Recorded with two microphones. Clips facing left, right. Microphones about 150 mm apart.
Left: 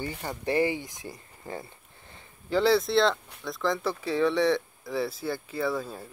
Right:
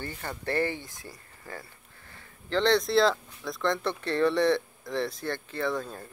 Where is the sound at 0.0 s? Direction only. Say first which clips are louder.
Left 3 dB; 15° left (ahead or behind).